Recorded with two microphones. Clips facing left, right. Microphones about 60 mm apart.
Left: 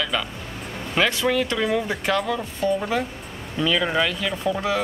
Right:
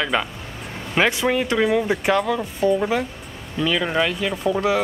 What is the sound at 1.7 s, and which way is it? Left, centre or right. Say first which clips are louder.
Speech: right 4 dB; centre.